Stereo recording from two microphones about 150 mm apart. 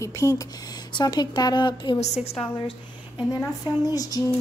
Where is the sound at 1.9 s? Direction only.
45° left (ahead or behind).